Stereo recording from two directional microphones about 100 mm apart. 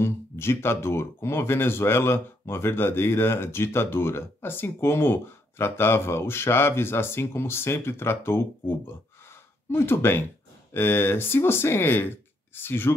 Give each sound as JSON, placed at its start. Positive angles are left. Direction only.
{"t": 0.0, "sound": "speech", "side_deg": 25}